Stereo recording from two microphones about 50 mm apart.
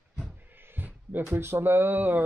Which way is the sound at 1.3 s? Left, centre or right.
Right.